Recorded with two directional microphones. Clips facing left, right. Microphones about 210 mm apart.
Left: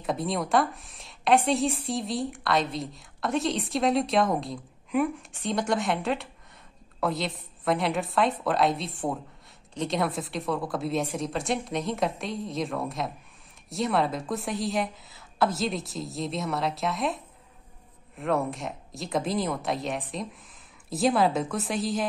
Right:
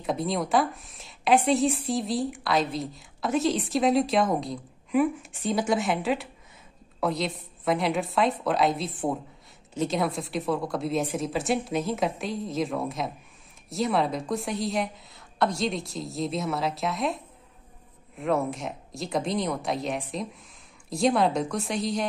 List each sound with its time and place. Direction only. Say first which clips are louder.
0.0 s a woman's voice: right 1 dB; centre (ahead or behind)